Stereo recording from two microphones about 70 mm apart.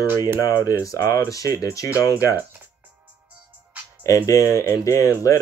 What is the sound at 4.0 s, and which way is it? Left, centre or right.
Speech, left.